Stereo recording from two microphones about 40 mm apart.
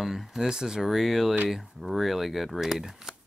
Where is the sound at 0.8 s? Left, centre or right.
Centre.